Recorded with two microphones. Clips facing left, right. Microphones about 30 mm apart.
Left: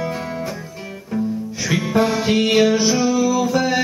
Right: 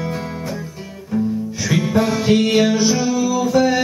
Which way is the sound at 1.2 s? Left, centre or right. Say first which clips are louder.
Right 2 dB; centre.